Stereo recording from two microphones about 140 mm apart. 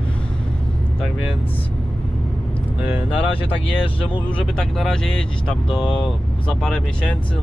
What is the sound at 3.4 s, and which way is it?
Speech, 40° left (ahead or behind).